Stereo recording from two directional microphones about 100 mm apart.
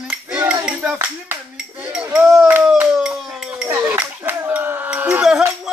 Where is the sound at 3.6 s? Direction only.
20° right (ahead or behind).